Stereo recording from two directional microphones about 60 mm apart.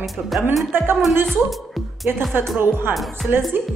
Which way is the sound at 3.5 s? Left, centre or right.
Right.